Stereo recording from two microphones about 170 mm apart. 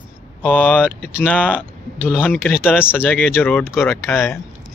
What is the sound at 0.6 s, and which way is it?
Speech, 10° left (ahead or behind).